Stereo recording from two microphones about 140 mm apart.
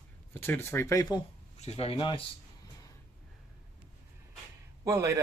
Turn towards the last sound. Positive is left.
turn(degrees=-25)  # may be behind; listen again after turning